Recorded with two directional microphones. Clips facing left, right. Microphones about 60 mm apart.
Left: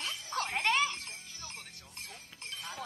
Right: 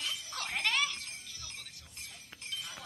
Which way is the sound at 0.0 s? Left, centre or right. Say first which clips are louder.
Left 4 dB; left.